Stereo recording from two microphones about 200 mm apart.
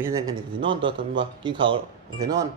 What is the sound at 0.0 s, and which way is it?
A man's voice, 15° right (ahead or behind).